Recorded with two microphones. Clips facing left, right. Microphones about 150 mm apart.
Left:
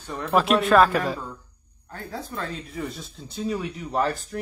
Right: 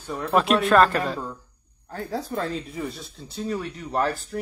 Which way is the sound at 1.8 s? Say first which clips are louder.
Right 5 dB; 35° right (ahead or behind).